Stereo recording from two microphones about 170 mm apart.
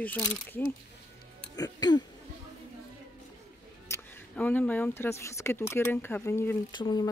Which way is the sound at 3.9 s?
15° left (ahead or behind).